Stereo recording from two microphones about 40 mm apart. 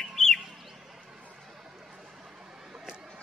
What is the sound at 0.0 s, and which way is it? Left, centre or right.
Bird, centre.